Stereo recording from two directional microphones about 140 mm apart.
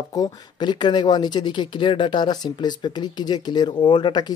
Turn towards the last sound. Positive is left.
turn(degrees=30)  # may be behind; listen again after turning